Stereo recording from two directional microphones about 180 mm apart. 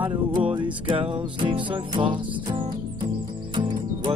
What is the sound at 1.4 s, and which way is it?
Music, 30° right (ahead or behind).